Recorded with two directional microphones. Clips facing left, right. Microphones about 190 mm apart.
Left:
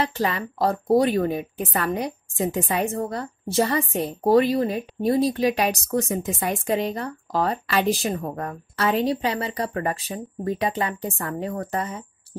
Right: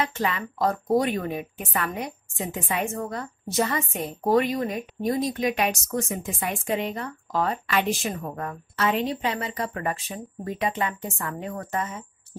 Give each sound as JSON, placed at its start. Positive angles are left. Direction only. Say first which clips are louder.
{"t": 0.0, "sound": "a woman's voice", "louder": "left 2 dB", "side_deg": 35}